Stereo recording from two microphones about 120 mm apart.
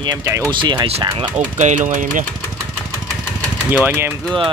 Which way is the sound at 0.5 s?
40° right (ahead or behind).